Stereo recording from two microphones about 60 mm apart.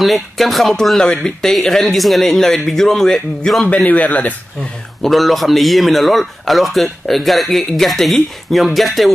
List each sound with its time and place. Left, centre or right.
0.0 s a man's voice: centre
3.7 s speech: left
5.0 s a man's voice: centre